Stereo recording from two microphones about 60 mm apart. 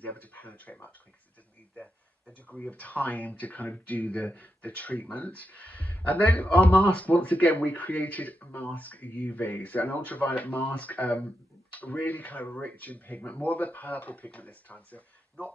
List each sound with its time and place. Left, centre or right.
0.0 s speech: left